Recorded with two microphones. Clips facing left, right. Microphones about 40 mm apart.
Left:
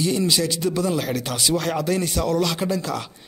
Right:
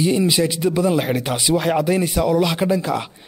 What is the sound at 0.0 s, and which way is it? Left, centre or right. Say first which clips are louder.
A man's voice: right 4 dB; centre.